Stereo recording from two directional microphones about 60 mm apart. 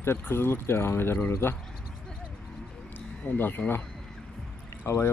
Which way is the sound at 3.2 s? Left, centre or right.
Left.